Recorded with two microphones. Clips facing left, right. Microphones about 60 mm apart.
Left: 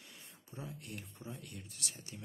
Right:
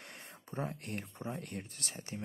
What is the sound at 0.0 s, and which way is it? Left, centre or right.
Speech, right.